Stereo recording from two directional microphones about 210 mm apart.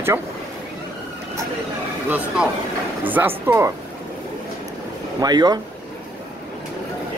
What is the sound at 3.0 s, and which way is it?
Speech, 10° right (ahead or behind).